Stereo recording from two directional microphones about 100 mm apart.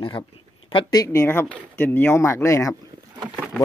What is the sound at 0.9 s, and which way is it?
Speech, 30° left (ahead or behind).